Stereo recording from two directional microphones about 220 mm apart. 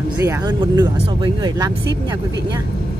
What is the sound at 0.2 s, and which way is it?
Speech, 15° right (ahead or behind).